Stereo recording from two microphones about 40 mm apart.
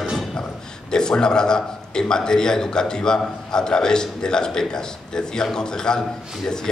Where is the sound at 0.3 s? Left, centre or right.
Centre.